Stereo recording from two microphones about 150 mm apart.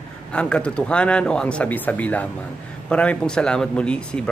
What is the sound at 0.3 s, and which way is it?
Speech, 5° left (ahead or behind).